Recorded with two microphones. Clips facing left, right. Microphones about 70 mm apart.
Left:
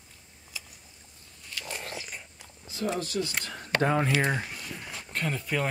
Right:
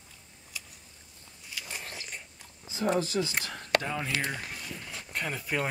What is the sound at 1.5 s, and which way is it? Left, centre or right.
Wild animals, centre.